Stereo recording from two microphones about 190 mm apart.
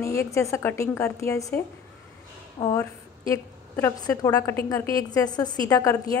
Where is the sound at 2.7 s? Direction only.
15° left (ahead or behind).